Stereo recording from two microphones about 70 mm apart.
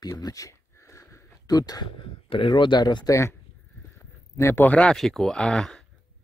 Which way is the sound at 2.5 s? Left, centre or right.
Left.